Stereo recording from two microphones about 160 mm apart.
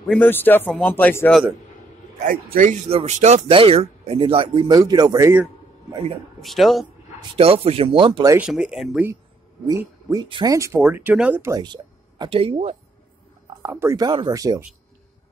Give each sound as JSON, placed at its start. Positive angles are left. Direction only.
{"t": 0.1, "sound": "a man's voice", "side_deg": 10}
{"t": 2.1, "sound": "speech", "side_deg": -55}
{"t": 6.4, "sound": "speech", "side_deg": 0}
{"t": 7.2, "sound": "speech", "side_deg": -35}
{"t": 8.4, "sound": "speech", "side_deg": -5}
{"t": 9.7, "sound": "speech", "side_deg": -20}
{"t": 11.6, "sound": "speech", "side_deg": -30}
{"t": 13.6, "sound": "speech", "side_deg": -15}